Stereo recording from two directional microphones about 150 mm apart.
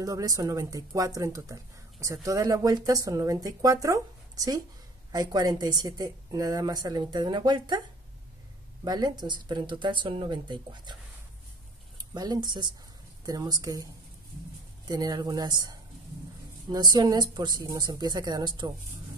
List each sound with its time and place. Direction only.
0.0 s speech: 25° right (ahead or behind)
8.8 s speech: 25° right (ahead or behind)
12.0 s speech: 25° right (ahead or behind)
14.9 s speech: 25° right (ahead or behind)